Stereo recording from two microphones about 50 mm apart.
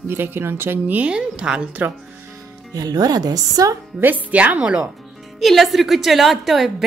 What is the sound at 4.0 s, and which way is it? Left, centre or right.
Speech, right.